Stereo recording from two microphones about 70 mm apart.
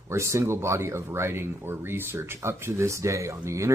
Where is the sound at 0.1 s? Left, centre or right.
Right.